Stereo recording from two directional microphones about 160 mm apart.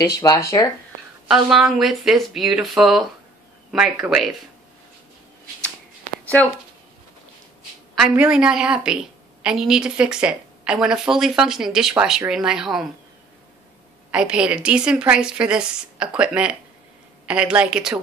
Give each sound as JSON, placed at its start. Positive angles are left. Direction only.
{"t": 0.1, "sound": "speech", "side_deg": 20}
{"t": 1.2, "sound": "a woman's voice", "side_deg": -5}
{"t": 6.2, "sound": "speech", "side_deg": 10}
{"t": 7.9, "sound": "a woman's voice", "side_deg": -5}
{"t": 14.1, "sound": "a woman's voice", "side_deg": -5}